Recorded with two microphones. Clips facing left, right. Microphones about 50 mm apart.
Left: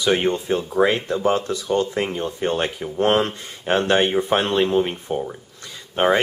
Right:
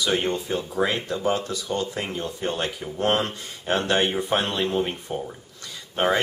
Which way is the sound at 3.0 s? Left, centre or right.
Left.